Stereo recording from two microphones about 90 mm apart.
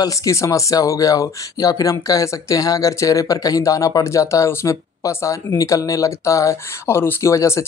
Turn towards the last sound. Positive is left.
turn(degrees=30)  # may be behind; listen again after turning